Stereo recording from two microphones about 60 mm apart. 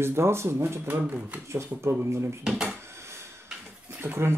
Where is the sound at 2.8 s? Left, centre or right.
Right.